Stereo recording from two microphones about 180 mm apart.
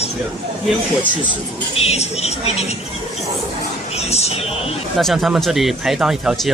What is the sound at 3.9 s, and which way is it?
Music, 35° left (ahead or behind).